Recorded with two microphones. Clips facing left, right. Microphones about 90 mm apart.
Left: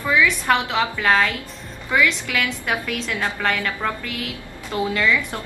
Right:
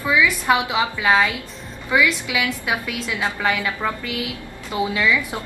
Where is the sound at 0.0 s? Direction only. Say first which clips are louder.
Even; 10° right (ahead or behind).